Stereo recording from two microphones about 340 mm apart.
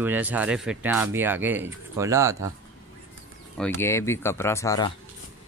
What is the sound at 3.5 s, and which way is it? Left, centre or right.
Speech, centre.